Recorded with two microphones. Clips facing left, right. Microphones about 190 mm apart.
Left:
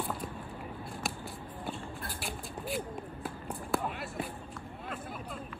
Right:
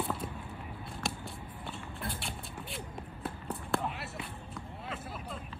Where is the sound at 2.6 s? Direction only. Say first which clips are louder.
Left 9 dB; centre (ahead or behind).